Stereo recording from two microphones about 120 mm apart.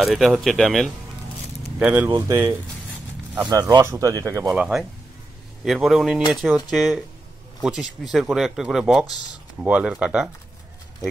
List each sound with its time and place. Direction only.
0.0 s speech: centre (ahead or behind)
1.8 s speech: 10° right (ahead or behind)
3.4 s speech: 30° right (ahead or behind)
4.5 s speech: 5° right (ahead or behind)